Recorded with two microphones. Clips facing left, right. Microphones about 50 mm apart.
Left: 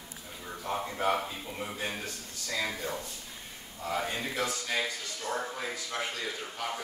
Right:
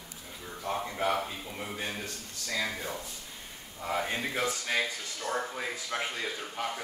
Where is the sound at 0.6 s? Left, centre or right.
Centre.